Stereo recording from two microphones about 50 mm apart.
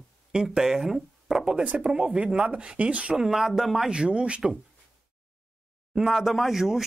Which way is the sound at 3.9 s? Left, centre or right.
Right.